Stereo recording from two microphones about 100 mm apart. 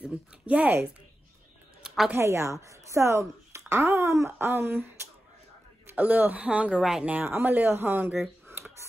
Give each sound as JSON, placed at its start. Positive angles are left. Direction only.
{"t": 0.0, "sound": "speech", "side_deg": -15}
{"t": 1.8, "sound": "music", "side_deg": -5}
{"t": 2.0, "sound": "speech", "side_deg": -25}
{"t": 8.5, "sound": "a sound", "side_deg": -25}